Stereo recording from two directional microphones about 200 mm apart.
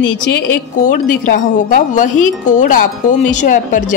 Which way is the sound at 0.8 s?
45° left (ahead or behind).